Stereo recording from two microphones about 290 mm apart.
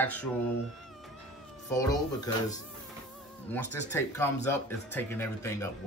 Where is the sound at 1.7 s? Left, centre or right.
Centre.